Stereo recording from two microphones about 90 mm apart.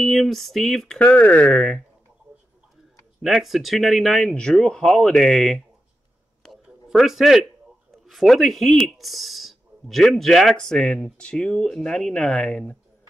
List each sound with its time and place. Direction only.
0.0 s speech: centre (ahead or behind)
0.9 s speech: 15° left (ahead or behind)
1.5 s speech: 5° left (ahead or behind)
3.2 s speech: 5° right (ahead or behind)
6.4 s a sound: centre (ahead or behind)
7.9 s speech: centre (ahead or behind)